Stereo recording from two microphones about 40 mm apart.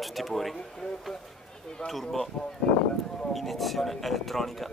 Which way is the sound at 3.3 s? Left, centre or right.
Centre.